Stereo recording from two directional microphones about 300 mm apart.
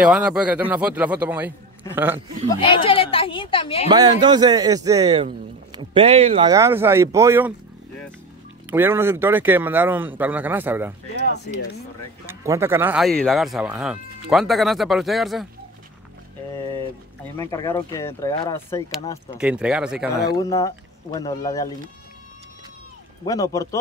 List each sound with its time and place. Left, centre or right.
0.0 s a man's voice: centre
2.5 s speech: centre
3.9 s a man's voice: centre
8.6 s a man's voice: centre
11.1 s speech: left
12.3 s speech: centre
17.4 s speech: centre
19.3 s speech: centre
20.3 s speech: centre
23.2 s speech: centre